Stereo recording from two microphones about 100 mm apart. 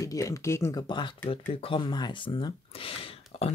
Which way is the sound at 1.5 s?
60° left (ahead or behind).